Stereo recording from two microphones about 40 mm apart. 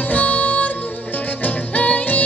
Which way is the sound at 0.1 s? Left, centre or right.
Left.